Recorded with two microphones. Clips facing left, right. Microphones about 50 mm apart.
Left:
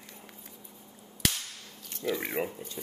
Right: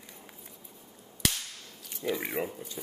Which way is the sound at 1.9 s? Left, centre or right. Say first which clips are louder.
Even; centre.